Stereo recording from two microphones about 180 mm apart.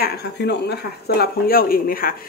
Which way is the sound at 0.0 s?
60° left (ahead or behind).